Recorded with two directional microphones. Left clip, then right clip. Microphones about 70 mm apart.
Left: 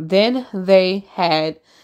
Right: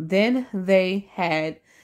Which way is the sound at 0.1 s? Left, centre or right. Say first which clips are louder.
Left 5 dB; left.